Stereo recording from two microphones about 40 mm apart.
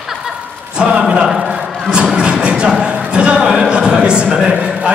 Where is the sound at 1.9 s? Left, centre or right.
Right.